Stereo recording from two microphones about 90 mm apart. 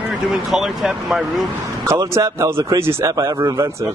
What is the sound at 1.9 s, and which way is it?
Speech, 35° right (ahead or behind).